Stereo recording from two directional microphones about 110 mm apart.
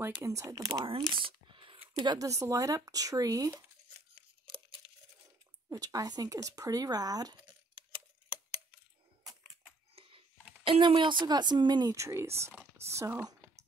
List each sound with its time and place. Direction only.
0.1 s speech: 30° right (ahead or behind)
0.8 s a sound: 45° right (ahead or behind)
2.0 s speech: 35° right (ahead or behind)
5.7 s speech: 35° right (ahead or behind)
9.9 s computer keyboard: 60° right (ahead or behind)
10.7 s a woman's voice: 50° right (ahead or behind)
11.9 s speech: 25° right (ahead or behind)